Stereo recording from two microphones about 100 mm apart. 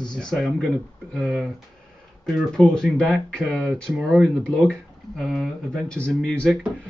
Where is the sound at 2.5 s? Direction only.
10° left (ahead or behind).